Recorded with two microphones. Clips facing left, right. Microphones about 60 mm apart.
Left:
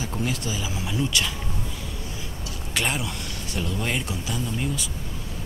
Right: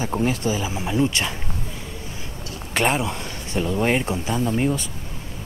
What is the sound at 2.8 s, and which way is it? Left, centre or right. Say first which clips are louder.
Speech: right 6 dB; right.